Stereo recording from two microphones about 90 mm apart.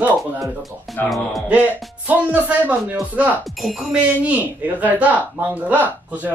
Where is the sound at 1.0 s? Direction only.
20° left (ahead or behind).